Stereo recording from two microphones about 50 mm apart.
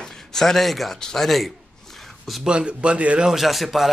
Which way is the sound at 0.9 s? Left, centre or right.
Centre.